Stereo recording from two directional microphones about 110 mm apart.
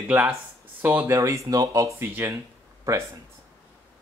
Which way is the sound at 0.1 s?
15° right (ahead or behind).